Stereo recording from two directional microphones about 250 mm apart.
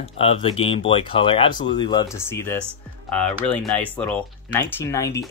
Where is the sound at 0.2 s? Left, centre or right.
Left.